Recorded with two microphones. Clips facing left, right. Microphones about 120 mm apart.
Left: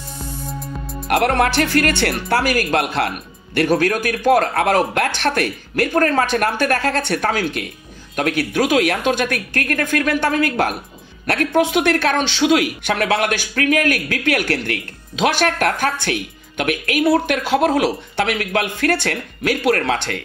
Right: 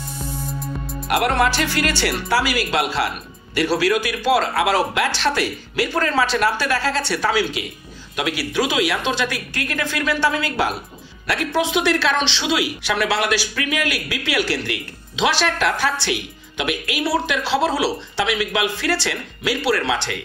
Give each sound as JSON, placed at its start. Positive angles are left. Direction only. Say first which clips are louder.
{"t": 1.0, "sound": "speech", "louder": "left 2 dB", "side_deg": 60}